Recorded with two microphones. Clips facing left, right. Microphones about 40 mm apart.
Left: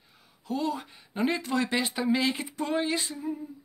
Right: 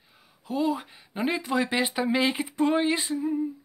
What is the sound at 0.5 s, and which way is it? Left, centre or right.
Speech, centre.